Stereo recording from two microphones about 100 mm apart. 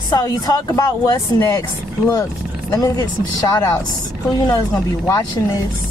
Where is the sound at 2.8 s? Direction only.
40° left (ahead or behind).